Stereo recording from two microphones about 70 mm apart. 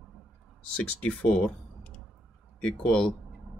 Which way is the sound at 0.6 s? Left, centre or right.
Centre.